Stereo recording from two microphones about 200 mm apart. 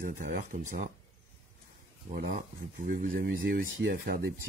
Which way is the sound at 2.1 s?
45° right (ahead or behind).